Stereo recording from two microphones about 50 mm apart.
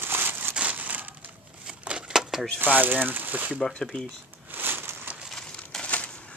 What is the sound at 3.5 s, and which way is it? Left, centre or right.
Speech, centre.